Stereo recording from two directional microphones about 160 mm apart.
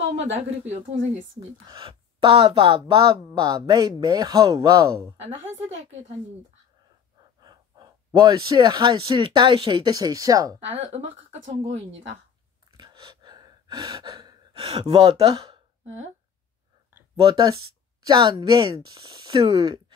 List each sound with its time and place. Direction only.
1.7 s speech: 30° right (ahead or behind)
7.4 s speech: 25° right (ahead or behind)
10.7 s speech: 40° right (ahead or behind)
12.7 s gasp: 30° right (ahead or behind)
17.2 s speech: 25° right (ahead or behind)